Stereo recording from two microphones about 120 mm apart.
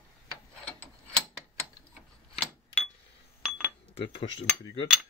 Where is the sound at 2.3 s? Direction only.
10° left (ahead or behind).